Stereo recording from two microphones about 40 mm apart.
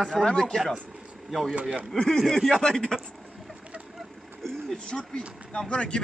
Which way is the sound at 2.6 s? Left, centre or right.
Centre.